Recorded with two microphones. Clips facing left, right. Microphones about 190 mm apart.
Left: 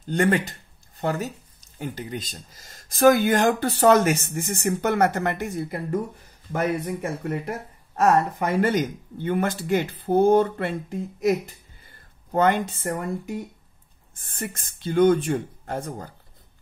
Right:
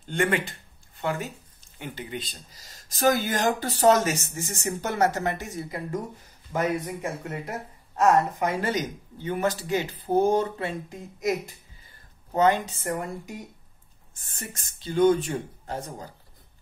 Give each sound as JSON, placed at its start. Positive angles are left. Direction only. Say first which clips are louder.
{"t": 0.0, "sound": "speech", "louder": "left 4 dB", "side_deg": 40}
{"t": 12.4, "sound": "speech", "louder": "left 1 dB", "side_deg": 55}